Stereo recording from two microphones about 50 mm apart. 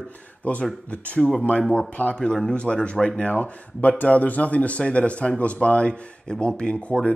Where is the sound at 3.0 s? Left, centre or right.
Left.